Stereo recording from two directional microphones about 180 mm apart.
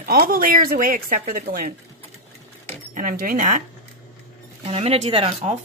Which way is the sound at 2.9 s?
50° right (ahead or behind).